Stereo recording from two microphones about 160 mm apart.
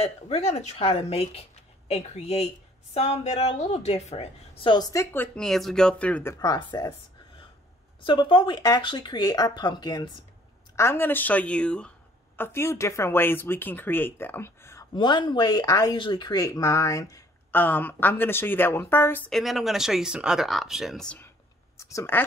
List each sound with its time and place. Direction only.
0.0 s speech: 40° left (ahead or behind); by 5.0 s 25° left (ahead or behind)
5.1 s speech: 10° left (ahead or behind)
6.3 s speech: 25° left (ahead or behind)
8.0 s speech: 30° left (ahead or behind)
10.8 s speech: 15° left (ahead or behind)
15.0 s speech: 30° left (ahead or behind); by 19.3 s 10° left (ahead or behind)
19.3 s speech: centre (ahead or behind)
21.7 s speech: 20° left (ahead or behind)